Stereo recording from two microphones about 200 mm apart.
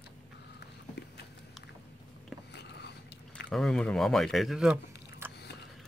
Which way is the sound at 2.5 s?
55° left (ahead or behind).